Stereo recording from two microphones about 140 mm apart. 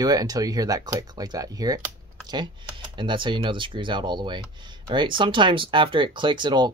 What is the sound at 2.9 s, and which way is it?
Speech, 35° right (ahead or behind).